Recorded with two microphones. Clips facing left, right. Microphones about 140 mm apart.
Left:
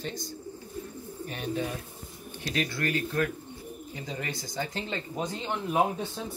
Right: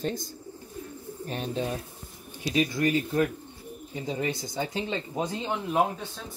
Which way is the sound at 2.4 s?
10° right (ahead or behind).